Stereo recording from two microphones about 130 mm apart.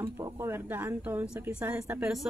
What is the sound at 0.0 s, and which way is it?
A woman's voice, 20° right (ahead or behind).